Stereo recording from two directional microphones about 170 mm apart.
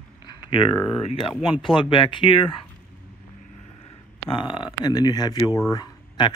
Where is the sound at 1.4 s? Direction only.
30° left (ahead or behind).